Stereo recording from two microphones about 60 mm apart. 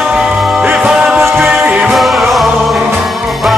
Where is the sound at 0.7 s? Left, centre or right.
Centre.